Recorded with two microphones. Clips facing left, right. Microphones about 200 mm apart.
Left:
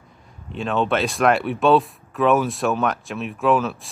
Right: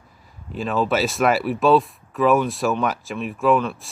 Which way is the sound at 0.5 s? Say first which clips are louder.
Even; centre (ahead or behind).